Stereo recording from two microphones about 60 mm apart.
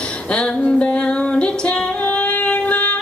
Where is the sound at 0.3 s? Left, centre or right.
Centre.